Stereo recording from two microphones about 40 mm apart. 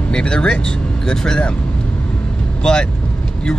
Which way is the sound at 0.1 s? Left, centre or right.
Left.